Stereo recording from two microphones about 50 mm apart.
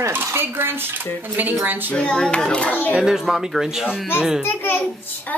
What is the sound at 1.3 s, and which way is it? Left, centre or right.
Speech, right.